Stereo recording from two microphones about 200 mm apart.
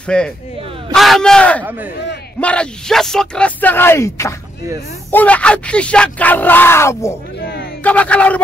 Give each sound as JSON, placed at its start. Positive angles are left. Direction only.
{"t": 0.0, "sound": "speech", "side_deg": 5}
{"t": 1.6, "sound": "speech", "side_deg": -10}
{"t": 2.4, "sound": "speech", "side_deg": 5}
{"t": 7.3, "sound": "a sound", "side_deg": 55}
{"t": 7.8, "sound": "speech", "side_deg": 5}